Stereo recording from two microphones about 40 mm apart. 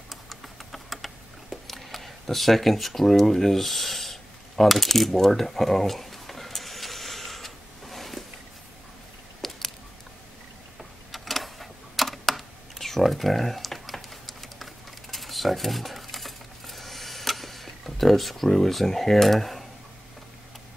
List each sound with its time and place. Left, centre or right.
0.1 s typing: centre
9.4 s a sound: centre
10.8 s typing: centre